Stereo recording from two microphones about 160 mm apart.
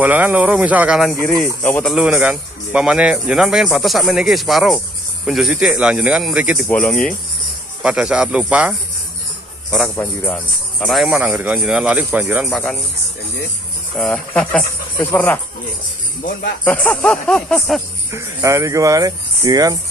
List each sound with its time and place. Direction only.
0.0 s speech: 10° right (ahead or behind)
6.7 s speech: 10° left (ahead or behind)
7.8 s a man's voice: 5° right (ahead or behind)
11.1 s speech: 10° right (ahead or behind)
13.9 s speech: 5° left (ahead or behind)
16.2 s speech: 70° left (ahead or behind)
16.6 s speech: 10° left (ahead or behind)
18.1 s speech: 20° right (ahead or behind)